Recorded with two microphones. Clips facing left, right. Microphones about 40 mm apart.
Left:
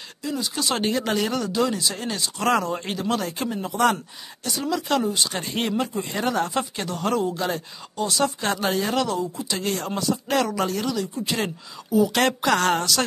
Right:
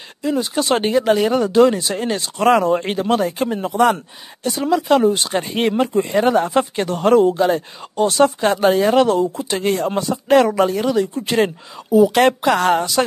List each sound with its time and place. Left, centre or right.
0.2 s speech: right
0.8 s speech: centre
1.5 s speech: right
5.0 s speech: right
5.3 s speech: right
5.7 s speech: right
6.6 s speech: right
7.3 s speech: right
8.0 s speech: right
8.4 s speech: right
9.1 s speech: right
9.6 s speech: right
12.1 s speech: centre